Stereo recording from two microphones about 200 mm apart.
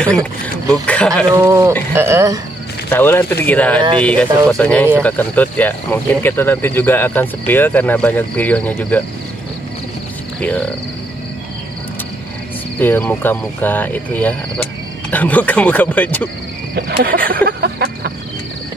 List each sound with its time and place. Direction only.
0.0 s speech: 5° left (ahead or behind)
1.3 s speech: 15° right (ahead or behind)
2.9 s speech: 10° left (ahead or behind)
10.4 s speech: 5° left (ahead or behind)
12.7 s speech: 10° left (ahead or behind)
16.7 s speech: 50° right (ahead or behind)
17.3 s a sound: 50° right (ahead or behind)